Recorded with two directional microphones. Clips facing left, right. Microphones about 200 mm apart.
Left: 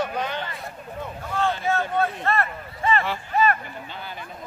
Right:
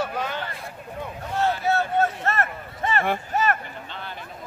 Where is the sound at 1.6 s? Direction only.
40° right (ahead or behind).